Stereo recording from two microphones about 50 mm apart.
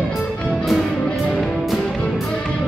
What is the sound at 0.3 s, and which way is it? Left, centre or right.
Music, centre.